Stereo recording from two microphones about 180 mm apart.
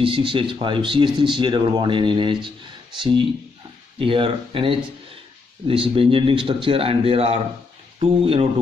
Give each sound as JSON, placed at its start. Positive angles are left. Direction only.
{"t": 0.0, "sound": "speech", "side_deg": -30}